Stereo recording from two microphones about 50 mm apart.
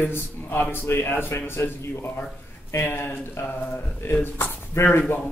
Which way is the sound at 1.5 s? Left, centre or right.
Left.